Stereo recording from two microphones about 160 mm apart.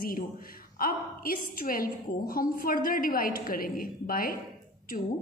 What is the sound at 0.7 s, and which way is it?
A woman's voice, 65° left (ahead or behind).